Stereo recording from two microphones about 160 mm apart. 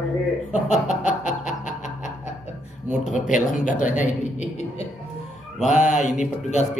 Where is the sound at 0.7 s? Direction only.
50° left (ahead or behind).